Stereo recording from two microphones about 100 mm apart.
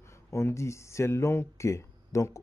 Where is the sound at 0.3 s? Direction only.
30° left (ahead or behind).